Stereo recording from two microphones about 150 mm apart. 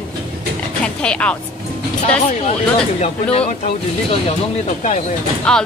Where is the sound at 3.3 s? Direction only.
40° left (ahead or behind).